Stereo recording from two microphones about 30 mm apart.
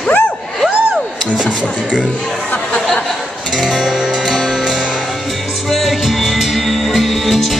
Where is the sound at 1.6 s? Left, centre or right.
Right.